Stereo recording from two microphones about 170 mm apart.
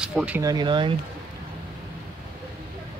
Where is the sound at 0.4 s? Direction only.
25° right (ahead or behind).